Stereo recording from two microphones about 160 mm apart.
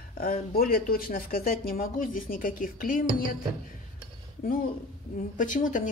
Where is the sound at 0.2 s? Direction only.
65° left (ahead or behind).